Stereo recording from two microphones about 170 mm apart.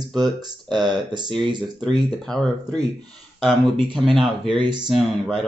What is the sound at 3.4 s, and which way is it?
Speech, centre (ahead or behind).